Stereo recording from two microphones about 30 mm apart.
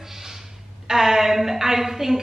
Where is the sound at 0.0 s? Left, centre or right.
Centre.